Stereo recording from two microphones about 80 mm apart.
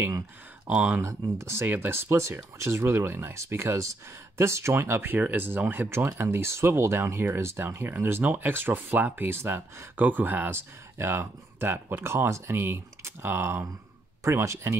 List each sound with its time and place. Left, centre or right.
0.7 s speech: centre
1.0 s speech: right